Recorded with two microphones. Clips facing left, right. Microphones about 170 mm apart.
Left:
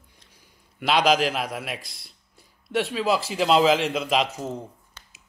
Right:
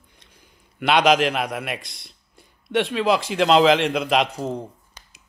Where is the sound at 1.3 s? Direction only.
Centre (ahead or behind).